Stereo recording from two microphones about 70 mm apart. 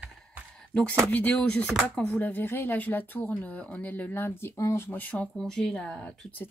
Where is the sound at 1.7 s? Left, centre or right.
Centre.